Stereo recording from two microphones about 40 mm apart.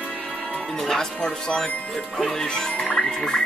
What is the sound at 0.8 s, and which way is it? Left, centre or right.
Speech, centre.